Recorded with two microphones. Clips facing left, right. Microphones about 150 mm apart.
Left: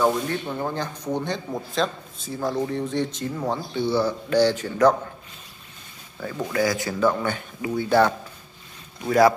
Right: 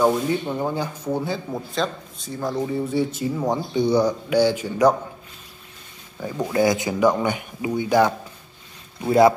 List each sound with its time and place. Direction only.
0.0 s speech: 15° right (ahead or behind)
6.1 s speech: 15° right (ahead or behind)